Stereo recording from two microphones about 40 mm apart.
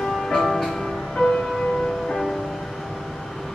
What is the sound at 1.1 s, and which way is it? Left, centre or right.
Music, centre.